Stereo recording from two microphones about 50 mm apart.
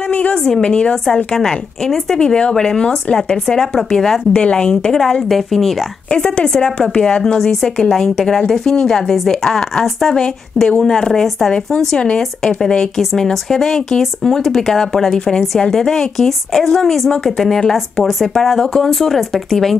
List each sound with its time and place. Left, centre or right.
0.1 s a sound: left
0.4 s a woman's voice: centre
1.0 s a woman's voice: centre
5.3 s speech: centre
6.0 s a woman's voice: centre